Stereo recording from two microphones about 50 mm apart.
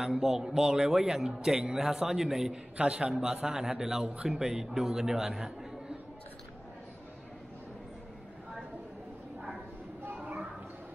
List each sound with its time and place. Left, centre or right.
0.0 s a man's voice: centre
2.8 s a man's voice: right
10.1 s children playing: right